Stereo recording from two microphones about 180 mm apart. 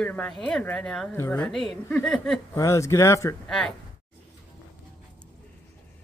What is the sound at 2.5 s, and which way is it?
Speech, 15° left (ahead or behind).